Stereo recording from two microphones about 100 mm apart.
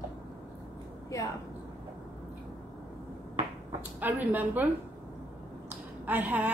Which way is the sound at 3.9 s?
20° right (ahead or behind).